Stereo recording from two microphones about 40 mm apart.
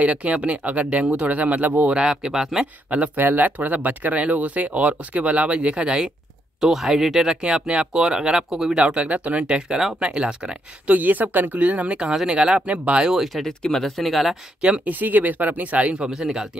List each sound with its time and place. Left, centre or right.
0.0 s speech: right
1.9 s speech: right
3.2 s speech: right
6.6 s speech: centre
7.4 s speech: right
8.7 s speech: right
10.9 s speech: right
12.0 s speech: centre
12.6 s speech: right
13.0 s speech: centre
13.5 s speech: centre
13.8 s speech: centre
14.9 s speech: right
16.1 s speech: centre